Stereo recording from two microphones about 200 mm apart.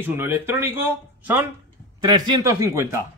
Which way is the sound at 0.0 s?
10° right (ahead or behind).